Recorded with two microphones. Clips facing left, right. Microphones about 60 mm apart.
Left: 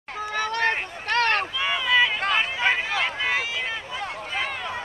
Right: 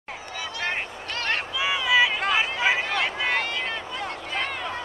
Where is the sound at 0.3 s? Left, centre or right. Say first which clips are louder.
Left 6 dB; left.